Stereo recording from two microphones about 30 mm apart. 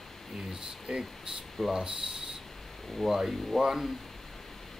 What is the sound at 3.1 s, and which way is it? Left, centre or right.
Speech, centre.